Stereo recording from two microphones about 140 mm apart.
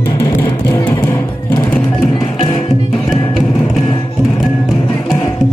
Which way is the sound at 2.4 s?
35° left (ahead or behind).